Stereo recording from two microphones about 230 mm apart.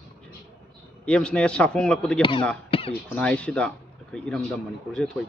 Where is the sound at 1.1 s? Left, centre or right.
Centre.